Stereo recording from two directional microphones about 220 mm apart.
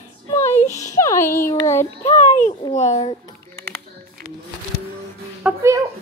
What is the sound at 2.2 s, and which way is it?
Speech, 35° left (ahead or behind).